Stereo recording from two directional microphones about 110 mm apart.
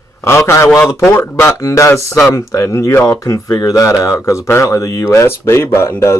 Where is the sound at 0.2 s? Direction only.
25° left (ahead or behind).